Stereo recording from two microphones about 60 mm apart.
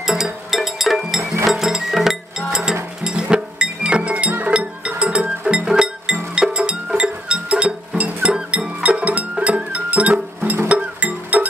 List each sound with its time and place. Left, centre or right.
0.0 s music: centre; by 11.4 s right